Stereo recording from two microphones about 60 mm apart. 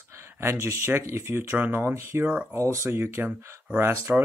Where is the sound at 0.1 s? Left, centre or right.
Right.